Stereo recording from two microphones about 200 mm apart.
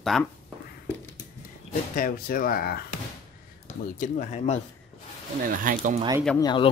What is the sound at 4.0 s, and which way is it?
Speech, 35° left (ahead or behind).